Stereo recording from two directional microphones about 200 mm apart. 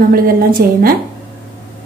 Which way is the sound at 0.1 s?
45° right (ahead or behind).